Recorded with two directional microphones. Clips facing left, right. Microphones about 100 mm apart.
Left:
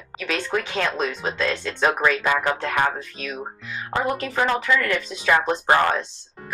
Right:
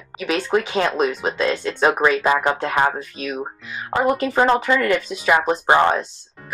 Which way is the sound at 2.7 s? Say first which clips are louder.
Right 3 dB; 20° right (ahead or behind).